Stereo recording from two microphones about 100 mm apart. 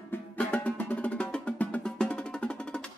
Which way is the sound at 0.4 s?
15° left (ahead or behind).